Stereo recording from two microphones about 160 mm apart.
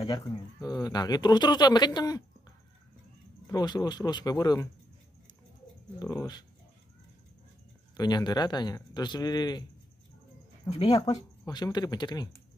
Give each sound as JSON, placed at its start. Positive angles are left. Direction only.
{"t": 0.0, "sound": "speech", "side_deg": 25}
{"t": 3.4, "sound": "speech", "side_deg": 25}
{"t": 8.0, "sound": "speech", "side_deg": 25}
{"t": 10.8, "sound": "speech", "side_deg": 25}